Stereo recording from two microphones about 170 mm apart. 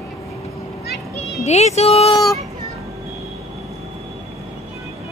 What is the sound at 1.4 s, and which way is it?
Speech, 40° left (ahead or behind).